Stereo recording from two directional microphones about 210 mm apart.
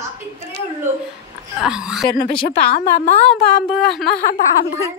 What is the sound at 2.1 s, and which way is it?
Speech, 45° left (ahead or behind).